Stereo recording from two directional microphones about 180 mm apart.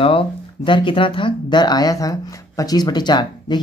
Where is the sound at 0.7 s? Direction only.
25° left (ahead or behind).